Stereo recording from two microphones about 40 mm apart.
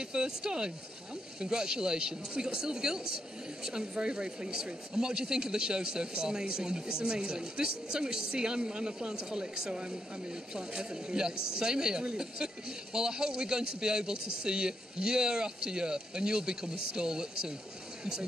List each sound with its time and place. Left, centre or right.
0.0 s speech: centre